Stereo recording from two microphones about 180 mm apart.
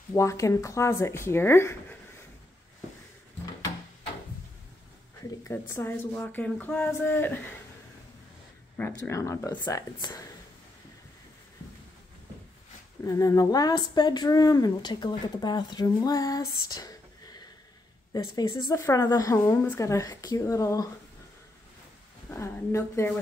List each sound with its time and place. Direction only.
0.1 s a woman's voice: 15° left (ahead or behind)
5.5 s a woman's voice: 15° left (ahead or behind)
8.7 s a woman's voice: 10° left (ahead or behind)
13.0 s speech: 15° left (ahead or behind)
22.3 s a woman's voice: 15° left (ahead or behind)